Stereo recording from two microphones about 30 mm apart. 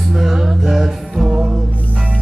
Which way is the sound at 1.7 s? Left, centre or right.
Left.